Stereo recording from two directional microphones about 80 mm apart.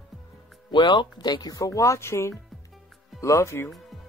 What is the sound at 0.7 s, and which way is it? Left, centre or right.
Speech, left.